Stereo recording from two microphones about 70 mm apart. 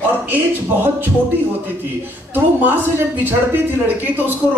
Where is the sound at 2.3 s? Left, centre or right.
Right.